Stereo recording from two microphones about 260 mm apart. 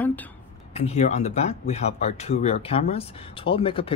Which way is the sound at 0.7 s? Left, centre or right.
Left.